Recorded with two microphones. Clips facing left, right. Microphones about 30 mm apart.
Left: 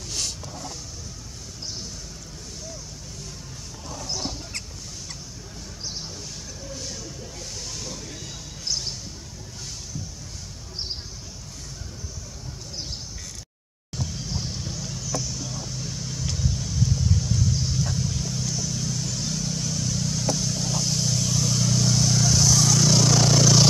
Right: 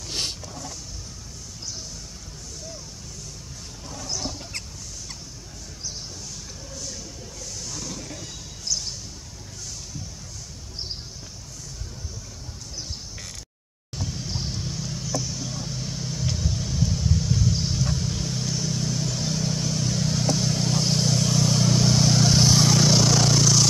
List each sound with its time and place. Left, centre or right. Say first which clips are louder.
4.1 s a sound: even; centre
6.7 s a sound: left 2 dB; centre
7.9 s music: right 1 dB; centre
8.6 s a sound: even; left
13.9 s music: even; centre
14.2 s vehicle: even; centre
14.5 s vehicle: right 1 dB; centre
17.5 s vehicle: right 1 dB; right
22.8 s vehicle: even; centre